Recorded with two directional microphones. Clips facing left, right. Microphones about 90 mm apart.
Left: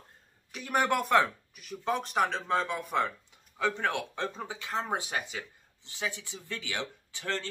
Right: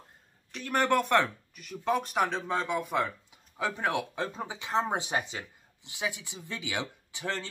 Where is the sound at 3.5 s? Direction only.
10° right (ahead or behind).